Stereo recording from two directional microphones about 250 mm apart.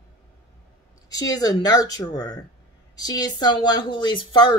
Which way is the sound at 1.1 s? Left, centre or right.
Centre.